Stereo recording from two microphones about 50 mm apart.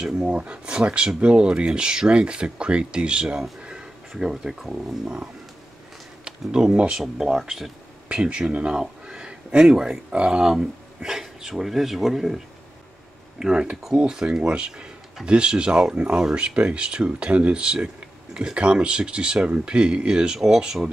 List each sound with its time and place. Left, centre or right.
0.0 s speech: centre
4.1 s speech: centre
8.1 s speech: right; by 12.4 s centre
13.4 s speech: centre